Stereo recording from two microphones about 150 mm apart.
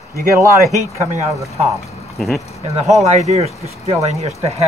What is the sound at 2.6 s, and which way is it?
Speech, 50° right (ahead or behind).